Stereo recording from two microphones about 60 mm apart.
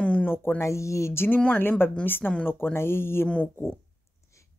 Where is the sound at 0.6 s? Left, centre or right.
Left.